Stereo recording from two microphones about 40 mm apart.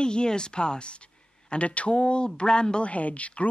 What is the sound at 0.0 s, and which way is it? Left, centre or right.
Speech, left.